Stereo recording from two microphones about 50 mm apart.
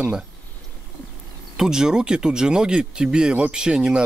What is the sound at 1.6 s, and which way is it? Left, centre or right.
Speech, centre.